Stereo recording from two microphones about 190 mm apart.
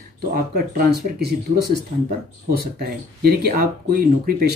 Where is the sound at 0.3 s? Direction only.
50° right (ahead or behind).